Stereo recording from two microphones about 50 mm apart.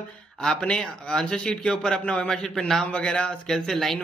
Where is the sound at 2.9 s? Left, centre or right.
Left.